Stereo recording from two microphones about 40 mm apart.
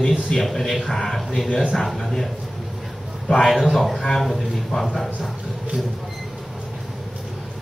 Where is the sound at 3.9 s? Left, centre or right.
Centre.